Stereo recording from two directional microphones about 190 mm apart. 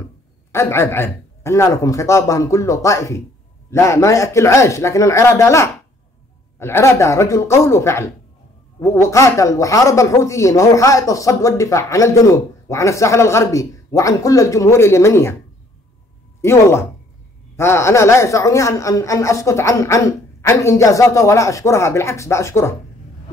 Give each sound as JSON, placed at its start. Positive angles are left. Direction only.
{"t": 0.5, "sound": "speech", "side_deg": 15}
{"t": 16.3, "sound": "speech", "side_deg": 15}